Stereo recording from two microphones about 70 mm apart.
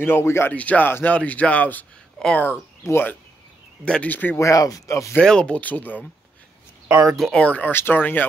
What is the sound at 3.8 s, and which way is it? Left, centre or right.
Speech, centre.